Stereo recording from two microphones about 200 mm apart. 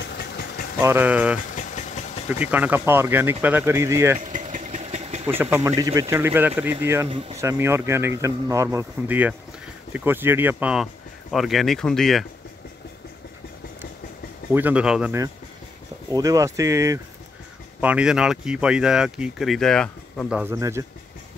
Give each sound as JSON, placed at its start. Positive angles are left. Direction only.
{"t": 0.0, "sound": "engine", "side_deg": 55}
{"t": 0.7, "sound": "speech", "side_deg": -10}
{"t": 1.5, "sound": "engine", "side_deg": 35}
{"t": 2.4, "sound": "speech", "side_deg": -10}
{"t": 4.2, "sound": "vehicle", "side_deg": -40}
{"t": 5.2, "sound": "speech", "side_deg": -10}
{"t": 14.5, "sound": "speech", "side_deg": -10}
{"t": 16.1, "sound": "speech", "side_deg": -15}
{"t": 20.5, "sound": "speech", "side_deg": -15}